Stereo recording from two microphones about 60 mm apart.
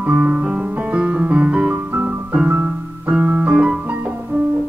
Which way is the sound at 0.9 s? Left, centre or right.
Centre.